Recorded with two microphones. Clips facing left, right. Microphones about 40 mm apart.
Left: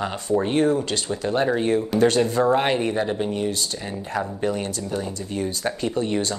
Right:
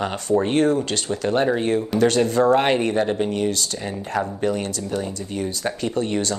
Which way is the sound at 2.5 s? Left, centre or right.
Right.